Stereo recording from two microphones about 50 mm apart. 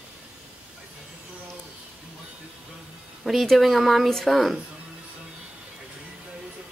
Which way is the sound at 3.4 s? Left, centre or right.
Centre.